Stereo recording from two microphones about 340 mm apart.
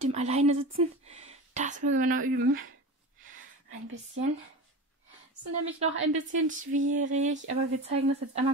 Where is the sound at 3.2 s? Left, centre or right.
Right.